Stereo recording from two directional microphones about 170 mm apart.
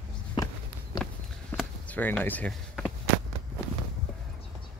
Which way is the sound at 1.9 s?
10° left (ahead or behind).